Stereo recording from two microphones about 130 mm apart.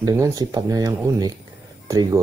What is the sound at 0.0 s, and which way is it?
Speech, 25° right (ahead or behind).